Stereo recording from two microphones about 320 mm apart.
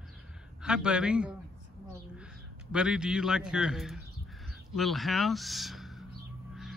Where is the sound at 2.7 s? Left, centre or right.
Centre.